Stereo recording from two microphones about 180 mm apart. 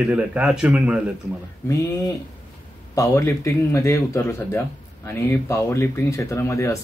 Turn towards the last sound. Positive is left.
turn(degrees=15)  # may be behind; listen again after turning